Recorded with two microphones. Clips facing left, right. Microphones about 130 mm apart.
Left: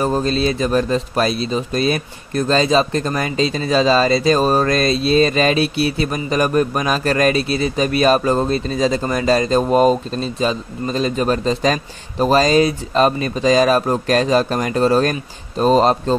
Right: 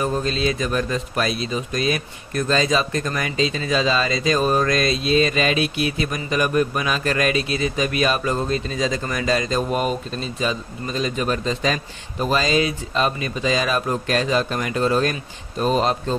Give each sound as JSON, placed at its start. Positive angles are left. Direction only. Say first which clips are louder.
{"t": 0.0, "sound": "speech", "louder": "left 4 dB", "side_deg": 35}